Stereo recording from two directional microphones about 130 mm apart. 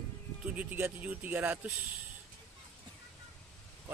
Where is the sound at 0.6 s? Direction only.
15° right (ahead or behind).